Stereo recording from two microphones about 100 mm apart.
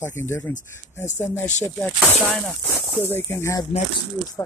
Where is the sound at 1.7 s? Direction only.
15° left (ahead or behind).